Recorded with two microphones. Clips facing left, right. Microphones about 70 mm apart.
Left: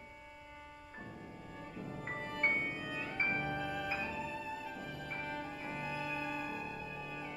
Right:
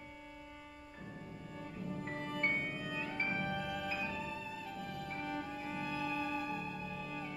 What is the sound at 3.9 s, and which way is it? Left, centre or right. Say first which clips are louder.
Music: left 1 dB; left.